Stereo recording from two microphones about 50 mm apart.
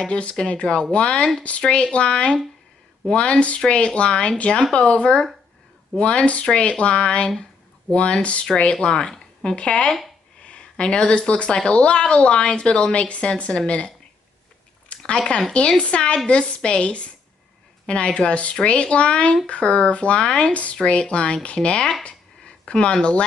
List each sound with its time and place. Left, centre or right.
0.0 s speech: left
14.9 s speech: centre
22.0 s a sound: left
22.9 s speech: centre